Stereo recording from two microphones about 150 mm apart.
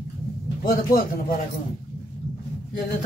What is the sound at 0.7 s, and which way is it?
Speech, 70° left (ahead or behind).